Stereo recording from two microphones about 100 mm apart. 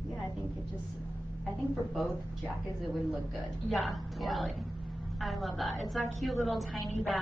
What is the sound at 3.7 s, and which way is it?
A woman's voice, centre (ahead or behind).